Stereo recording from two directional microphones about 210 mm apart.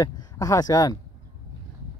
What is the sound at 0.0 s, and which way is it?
Speech, 15° left (ahead or behind).